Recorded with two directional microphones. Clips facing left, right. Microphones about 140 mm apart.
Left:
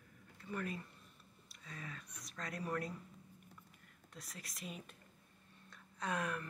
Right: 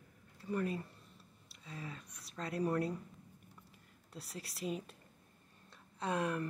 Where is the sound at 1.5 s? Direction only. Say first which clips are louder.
Right 3 dB; 25° right (ahead or behind).